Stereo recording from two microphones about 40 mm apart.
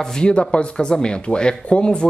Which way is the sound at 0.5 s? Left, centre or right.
Left.